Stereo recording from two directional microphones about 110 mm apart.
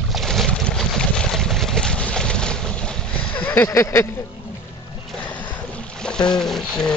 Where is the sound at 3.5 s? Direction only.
25° left (ahead or behind).